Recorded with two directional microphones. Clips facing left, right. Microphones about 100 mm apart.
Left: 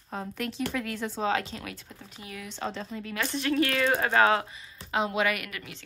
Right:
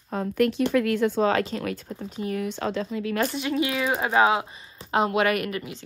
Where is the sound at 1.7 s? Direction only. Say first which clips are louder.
Right 12 dB; 45° right (ahead or behind).